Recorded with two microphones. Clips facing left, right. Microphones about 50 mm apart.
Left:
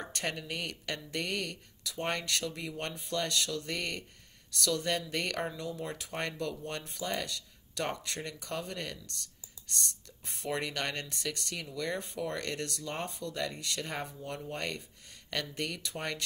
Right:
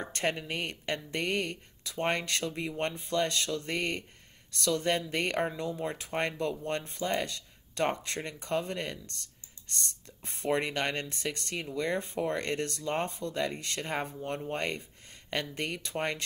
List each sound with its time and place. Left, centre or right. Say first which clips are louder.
0.0 s speech: right 5 dB; right